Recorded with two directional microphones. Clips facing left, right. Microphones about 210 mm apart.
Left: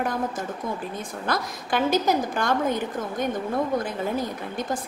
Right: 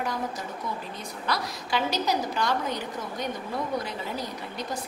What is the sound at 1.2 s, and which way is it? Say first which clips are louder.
A woman's voice: left 2 dB; 50° left (ahead or behind).